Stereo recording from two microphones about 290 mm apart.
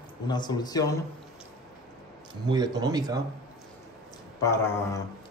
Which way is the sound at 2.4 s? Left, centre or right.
Centre.